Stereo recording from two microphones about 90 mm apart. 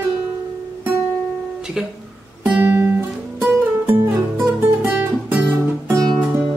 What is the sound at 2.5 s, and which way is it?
Music, 25° right (ahead or behind).